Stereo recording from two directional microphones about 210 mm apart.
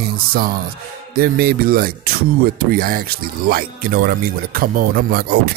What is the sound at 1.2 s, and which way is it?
Speech, 45° right (ahead or behind).